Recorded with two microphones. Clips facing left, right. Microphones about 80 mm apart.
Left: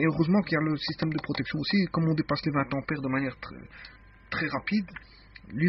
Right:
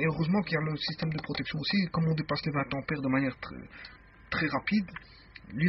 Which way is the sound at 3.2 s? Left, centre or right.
Centre.